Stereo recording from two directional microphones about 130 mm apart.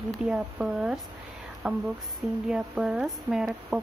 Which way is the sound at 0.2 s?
5° right (ahead or behind).